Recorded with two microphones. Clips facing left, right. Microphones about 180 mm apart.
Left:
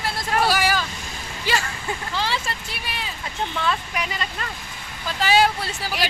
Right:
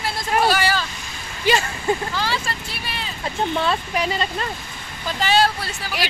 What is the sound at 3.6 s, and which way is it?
Speech, 30° right (ahead or behind).